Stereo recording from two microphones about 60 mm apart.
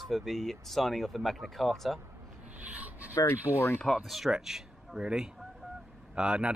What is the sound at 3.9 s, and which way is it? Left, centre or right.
Speech, centre.